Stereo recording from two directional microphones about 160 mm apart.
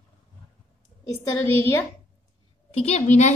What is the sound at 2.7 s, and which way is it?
Speech, 40° left (ahead or behind).